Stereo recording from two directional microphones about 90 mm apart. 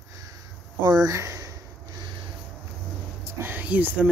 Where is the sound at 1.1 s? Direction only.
35° right (ahead or behind).